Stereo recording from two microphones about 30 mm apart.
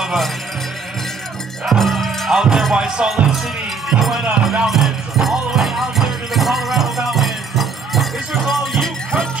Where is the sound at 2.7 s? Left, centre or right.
Right.